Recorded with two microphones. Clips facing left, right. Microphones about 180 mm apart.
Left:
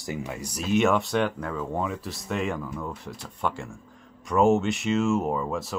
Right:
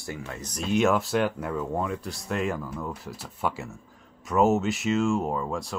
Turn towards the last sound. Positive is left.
turn(degrees=0)  # may be behind; listen again after turning